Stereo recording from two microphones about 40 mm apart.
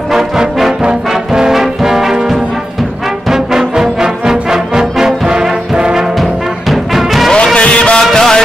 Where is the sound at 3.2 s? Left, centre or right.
Centre.